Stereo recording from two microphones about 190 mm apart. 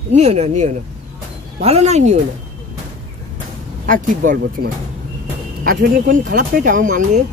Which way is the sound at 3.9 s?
45° right (ahead or behind).